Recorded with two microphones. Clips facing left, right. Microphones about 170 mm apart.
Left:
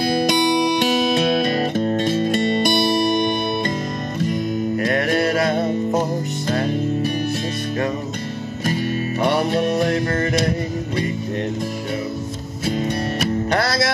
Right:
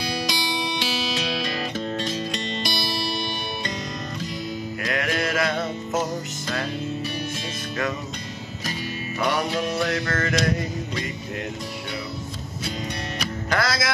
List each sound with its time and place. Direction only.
0.0 s music: 50° left (ahead or behind)
4.8 s music: 30° left (ahead or behind)
9.2 s music: 30° left (ahead or behind)
9.5 s music: 55° left (ahead or behind)
10.0 s music: 30° left (ahead or behind)
13.5 s music: 35° left (ahead or behind)